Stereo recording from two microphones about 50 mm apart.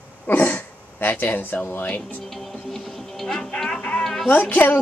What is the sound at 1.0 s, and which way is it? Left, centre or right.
Speech, left.